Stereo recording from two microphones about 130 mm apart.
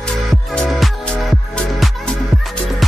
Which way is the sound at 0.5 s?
Centre (ahead or behind).